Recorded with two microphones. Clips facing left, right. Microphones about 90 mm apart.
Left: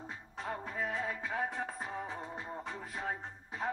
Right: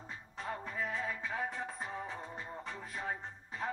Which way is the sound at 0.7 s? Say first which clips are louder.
Left 1 dB; 15° left (ahead or behind).